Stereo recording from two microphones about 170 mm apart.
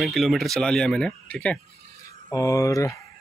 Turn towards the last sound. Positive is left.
turn(degrees=20)  # may be behind; listen again after turning